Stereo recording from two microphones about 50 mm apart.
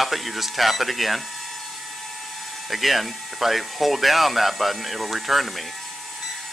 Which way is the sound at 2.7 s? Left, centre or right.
Centre.